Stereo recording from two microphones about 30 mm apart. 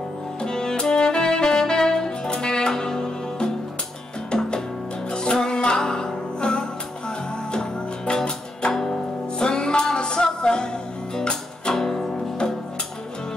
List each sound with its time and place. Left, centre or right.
0.4 s saxophone: left
5.1 s music: left
8.7 s music: centre
9.4 s music: left
11.7 s music: centre